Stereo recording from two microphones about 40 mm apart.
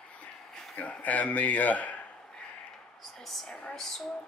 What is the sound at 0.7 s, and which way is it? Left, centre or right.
Speech, left.